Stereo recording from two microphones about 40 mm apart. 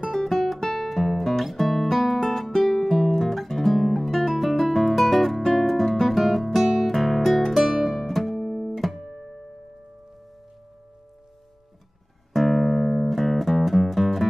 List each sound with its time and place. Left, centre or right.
0.0 s guitar: centre
6.7 s music: centre
12.4 s music: centre